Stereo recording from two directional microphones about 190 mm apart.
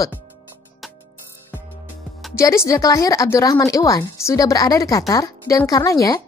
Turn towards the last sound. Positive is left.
turn(degrees=20)  # may be behind; listen again after turning